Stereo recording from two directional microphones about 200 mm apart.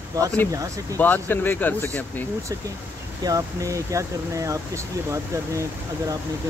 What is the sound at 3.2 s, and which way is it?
Speech, 15° right (ahead or behind).